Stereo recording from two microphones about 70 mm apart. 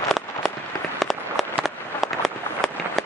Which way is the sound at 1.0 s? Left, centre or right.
Centre.